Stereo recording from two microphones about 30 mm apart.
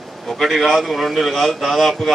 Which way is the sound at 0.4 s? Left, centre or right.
Centre.